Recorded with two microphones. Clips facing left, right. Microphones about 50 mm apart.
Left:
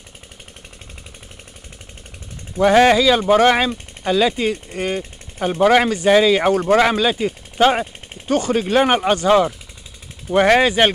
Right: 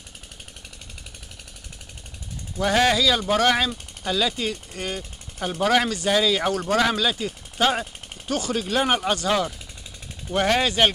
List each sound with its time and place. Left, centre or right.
2.5 s speech: left
9.1 s speech: left
10.6 s speech: left